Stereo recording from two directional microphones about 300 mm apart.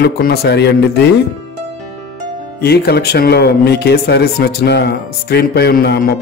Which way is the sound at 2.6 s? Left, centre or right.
Left.